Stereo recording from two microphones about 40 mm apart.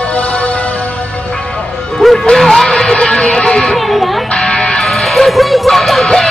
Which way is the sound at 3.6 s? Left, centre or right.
Centre.